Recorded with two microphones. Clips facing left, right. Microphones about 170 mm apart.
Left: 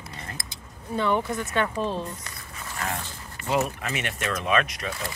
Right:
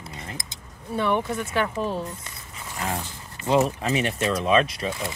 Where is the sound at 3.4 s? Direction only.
25° right (ahead or behind).